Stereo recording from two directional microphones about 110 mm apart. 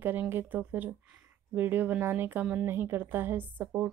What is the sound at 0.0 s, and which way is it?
A woman's voice, 20° right (ahead or behind).